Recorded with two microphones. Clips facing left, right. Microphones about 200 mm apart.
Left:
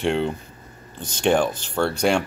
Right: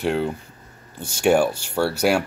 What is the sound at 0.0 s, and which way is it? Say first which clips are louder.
Speech: even; 5° right (ahead or behind).